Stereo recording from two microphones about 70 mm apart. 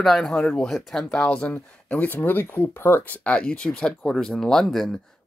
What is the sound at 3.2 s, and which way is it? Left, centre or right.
Speech, centre.